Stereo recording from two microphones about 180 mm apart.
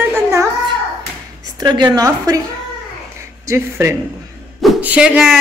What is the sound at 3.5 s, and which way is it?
Speech, 15° right (ahead or behind).